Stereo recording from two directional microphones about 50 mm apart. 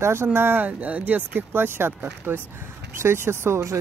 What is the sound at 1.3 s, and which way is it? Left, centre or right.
Speech, right.